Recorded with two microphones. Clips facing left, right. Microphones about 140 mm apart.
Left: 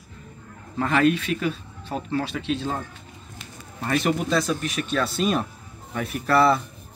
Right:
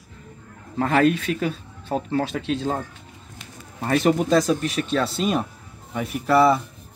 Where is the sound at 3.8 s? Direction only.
30° right (ahead or behind); by 6.6 s 15° right (ahead or behind).